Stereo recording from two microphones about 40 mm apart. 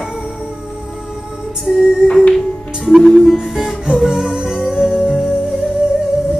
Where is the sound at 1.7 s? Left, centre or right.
Centre.